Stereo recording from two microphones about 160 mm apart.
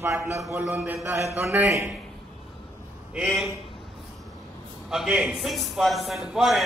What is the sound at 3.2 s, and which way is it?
Speech, 5° right (ahead or behind).